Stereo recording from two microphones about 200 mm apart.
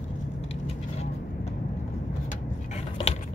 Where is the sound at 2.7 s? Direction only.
35° left (ahead or behind).